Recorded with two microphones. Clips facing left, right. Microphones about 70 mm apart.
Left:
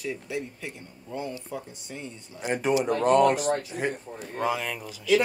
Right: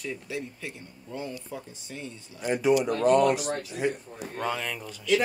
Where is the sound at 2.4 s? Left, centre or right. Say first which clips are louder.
Right 1 dB; left.